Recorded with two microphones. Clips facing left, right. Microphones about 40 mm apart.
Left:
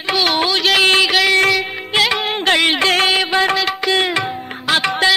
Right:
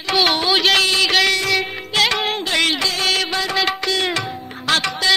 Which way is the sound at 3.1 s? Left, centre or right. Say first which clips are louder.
Left 3 dB; centre.